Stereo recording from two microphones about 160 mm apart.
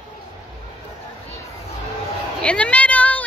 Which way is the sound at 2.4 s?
10° left (ahead or behind).